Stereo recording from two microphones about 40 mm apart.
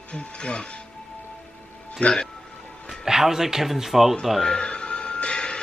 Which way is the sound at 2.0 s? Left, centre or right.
Left.